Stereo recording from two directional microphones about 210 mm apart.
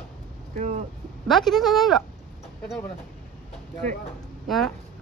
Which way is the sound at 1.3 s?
Centre (ahead or behind).